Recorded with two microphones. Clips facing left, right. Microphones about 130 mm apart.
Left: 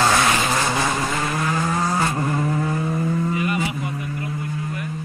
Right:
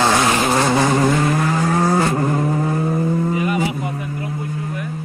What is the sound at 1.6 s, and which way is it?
Vehicle, 65° right (ahead or behind).